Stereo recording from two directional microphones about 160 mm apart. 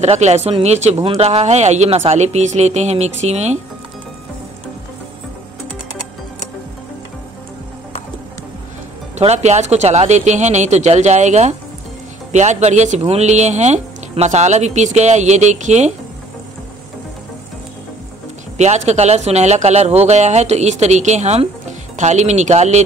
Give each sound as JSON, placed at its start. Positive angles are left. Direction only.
{"t": 0.0, "sound": "speech", "side_deg": -45}
{"t": 9.2, "sound": "speech", "side_deg": -45}
{"t": 18.6, "sound": "speech", "side_deg": -45}